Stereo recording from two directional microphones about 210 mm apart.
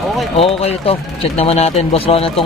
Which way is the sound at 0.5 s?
30° left (ahead or behind).